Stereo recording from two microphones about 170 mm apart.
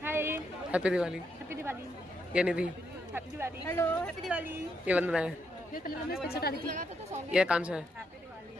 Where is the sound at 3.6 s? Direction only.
15° left (ahead or behind).